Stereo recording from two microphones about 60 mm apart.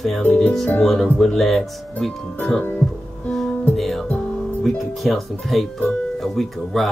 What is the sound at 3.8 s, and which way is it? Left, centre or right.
Music, centre.